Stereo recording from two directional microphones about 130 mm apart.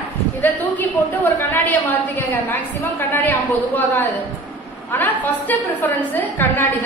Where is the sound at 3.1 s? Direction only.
15° left (ahead or behind).